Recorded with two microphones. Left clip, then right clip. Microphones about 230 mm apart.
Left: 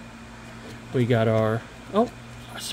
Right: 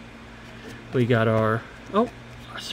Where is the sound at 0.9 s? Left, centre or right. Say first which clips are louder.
Right 1 dB; centre.